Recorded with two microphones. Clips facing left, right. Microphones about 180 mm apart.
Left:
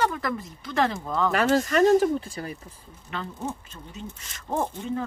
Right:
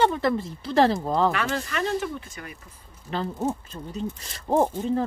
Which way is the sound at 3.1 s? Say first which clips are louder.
Right 6 dB; 35° right (ahead or behind).